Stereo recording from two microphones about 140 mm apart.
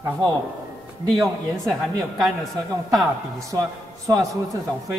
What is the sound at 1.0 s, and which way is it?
Speech, 30° right (ahead or behind).